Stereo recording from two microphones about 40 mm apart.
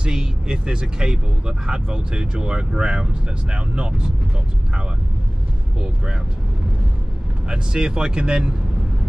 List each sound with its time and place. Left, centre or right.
0.0 s speech: centre
7.4 s speech: centre